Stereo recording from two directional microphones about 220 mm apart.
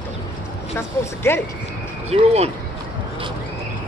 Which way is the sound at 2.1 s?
30° right (ahead or behind).